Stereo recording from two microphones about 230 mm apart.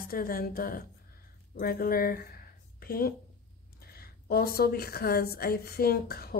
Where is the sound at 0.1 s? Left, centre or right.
Left.